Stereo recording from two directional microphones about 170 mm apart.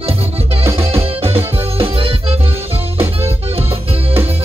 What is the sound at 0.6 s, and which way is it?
Music, 35° right (ahead or behind).